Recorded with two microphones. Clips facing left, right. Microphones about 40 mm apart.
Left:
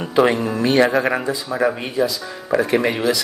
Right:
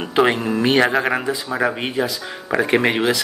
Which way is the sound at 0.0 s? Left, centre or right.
Right.